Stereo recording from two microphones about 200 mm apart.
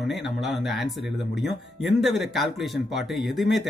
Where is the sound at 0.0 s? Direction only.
Centre (ahead or behind).